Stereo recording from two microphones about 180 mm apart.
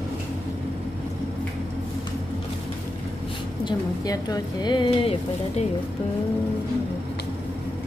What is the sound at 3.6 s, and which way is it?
A woman's voice, 20° left (ahead or behind).